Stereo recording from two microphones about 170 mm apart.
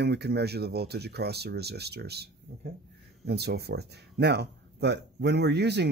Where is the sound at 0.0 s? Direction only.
75° right (ahead or behind).